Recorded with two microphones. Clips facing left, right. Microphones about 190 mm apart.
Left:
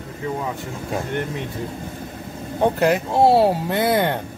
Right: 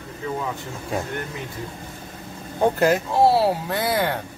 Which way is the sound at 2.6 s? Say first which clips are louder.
Left 1 dB; centre (ahead or behind).